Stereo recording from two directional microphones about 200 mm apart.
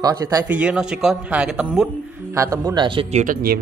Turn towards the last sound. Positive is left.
turn(degrees=-50)  # may be behind; listen again after turning